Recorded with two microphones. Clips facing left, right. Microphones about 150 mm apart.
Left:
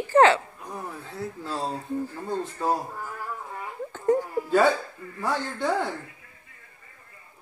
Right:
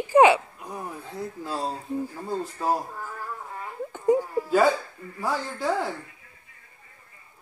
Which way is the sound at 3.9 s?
10° right (ahead or behind).